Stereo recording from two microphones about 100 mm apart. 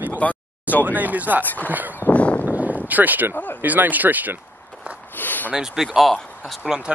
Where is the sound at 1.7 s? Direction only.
15° right (ahead or behind).